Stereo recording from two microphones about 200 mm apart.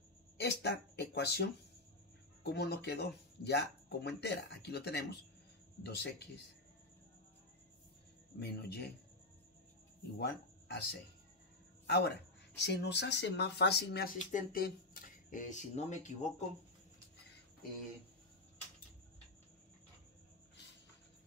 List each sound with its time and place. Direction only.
0.4 s speech: 55° left (ahead or behind)
8.4 s speech: 55° left (ahead or behind)
10.1 s speech: 55° left (ahead or behind)
11.8 s a sound: 55° left (ahead or behind)
12.6 s speech: 60° left (ahead or behind)
14.1 s speech: 45° left (ahead or behind)